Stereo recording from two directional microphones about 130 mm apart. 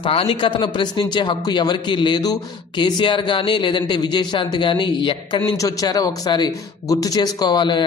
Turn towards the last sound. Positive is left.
turn(degrees=35)  # may be behind; listen again after turning